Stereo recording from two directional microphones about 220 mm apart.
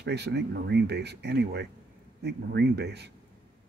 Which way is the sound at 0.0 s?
50° right (ahead or behind).